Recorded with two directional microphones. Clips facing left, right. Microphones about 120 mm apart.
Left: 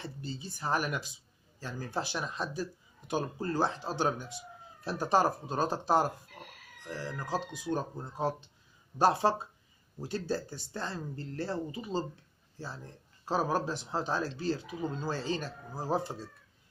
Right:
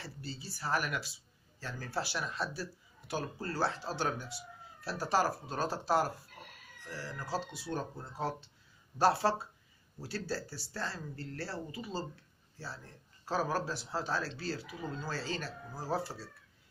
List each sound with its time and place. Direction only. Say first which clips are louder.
0.0 s speech: left 4 dB; 20° left (ahead or behind)